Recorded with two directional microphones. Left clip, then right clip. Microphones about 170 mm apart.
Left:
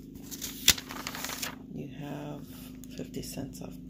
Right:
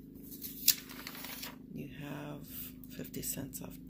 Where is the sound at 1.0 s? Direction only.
70° left (ahead or behind).